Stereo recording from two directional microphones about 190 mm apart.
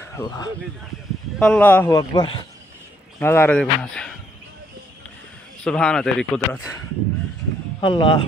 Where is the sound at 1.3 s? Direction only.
5° left (ahead or behind).